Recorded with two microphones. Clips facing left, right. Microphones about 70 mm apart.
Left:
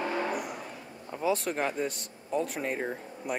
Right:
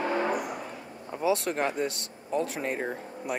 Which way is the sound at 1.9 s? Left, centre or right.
Right.